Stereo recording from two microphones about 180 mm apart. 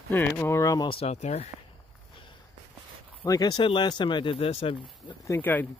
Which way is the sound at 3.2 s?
20° left (ahead or behind).